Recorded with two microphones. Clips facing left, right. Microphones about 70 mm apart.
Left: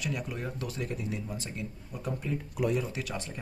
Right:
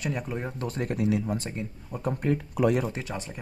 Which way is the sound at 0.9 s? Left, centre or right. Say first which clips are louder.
Right 9 dB; right.